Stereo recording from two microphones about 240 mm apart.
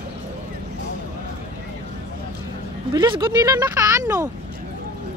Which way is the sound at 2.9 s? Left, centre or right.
Centre.